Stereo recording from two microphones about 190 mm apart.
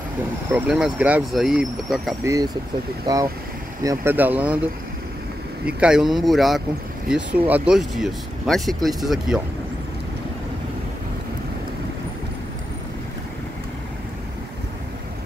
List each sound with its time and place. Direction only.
0.5 s speech: 5° right (ahead or behind)
2.2 s speech: 20° right (ahead or behind)
3.8 s speech: 15° right (ahead or behind)
5.7 s speech: 5° right (ahead or behind)